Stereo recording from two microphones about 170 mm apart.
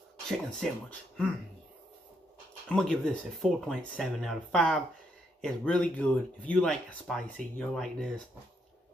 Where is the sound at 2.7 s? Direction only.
5° left (ahead or behind).